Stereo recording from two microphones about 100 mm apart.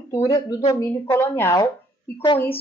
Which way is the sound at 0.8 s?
25° left (ahead or behind).